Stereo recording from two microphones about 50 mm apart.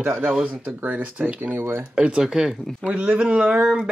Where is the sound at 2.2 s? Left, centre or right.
Centre.